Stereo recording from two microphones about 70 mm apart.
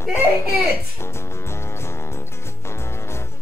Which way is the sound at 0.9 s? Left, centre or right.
Left.